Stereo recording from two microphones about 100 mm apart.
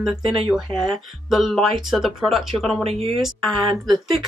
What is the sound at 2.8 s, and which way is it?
Speech, 90° right.